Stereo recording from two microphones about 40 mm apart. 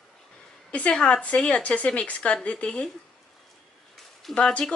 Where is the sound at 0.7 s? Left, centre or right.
Left.